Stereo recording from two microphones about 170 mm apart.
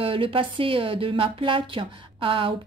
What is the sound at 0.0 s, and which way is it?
Speech, 30° right (ahead or behind).